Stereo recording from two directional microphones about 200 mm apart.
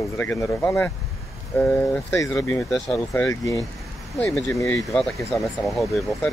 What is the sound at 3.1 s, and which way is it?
Speech, 15° left (ahead or behind).